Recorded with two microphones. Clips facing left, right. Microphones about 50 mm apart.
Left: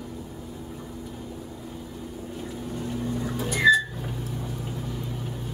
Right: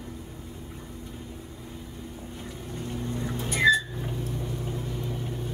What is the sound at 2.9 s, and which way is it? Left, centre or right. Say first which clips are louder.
Vehicle: left 2 dB; right.